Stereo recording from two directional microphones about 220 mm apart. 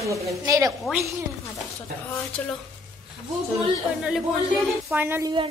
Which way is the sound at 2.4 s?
5° left (ahead or behind).